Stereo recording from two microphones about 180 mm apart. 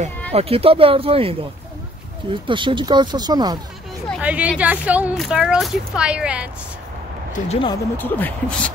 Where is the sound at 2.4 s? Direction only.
25° right (ahead or behind).